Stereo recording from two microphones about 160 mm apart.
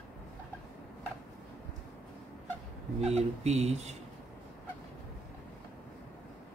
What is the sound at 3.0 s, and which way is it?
Speech, 40° right (ahead or behind).